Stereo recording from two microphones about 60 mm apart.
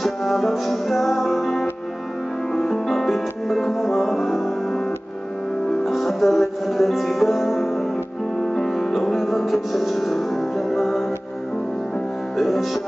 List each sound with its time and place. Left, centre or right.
0.0 s music: centre
5.9 s music: centre
12.4 s music: centre